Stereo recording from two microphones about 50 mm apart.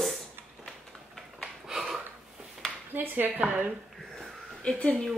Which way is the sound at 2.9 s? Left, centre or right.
Right.